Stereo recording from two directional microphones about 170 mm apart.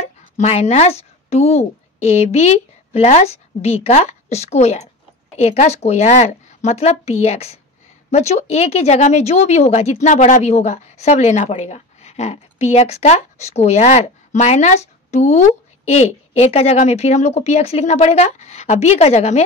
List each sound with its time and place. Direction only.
0.0 s speech: 35° left (ahead or behind)